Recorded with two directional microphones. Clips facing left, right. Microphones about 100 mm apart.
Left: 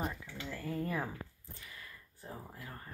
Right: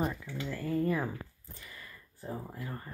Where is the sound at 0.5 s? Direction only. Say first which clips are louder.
Right 6 dB; 5° left (ahead or behind).